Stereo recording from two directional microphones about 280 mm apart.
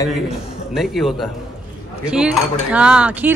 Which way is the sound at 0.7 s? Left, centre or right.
Centre.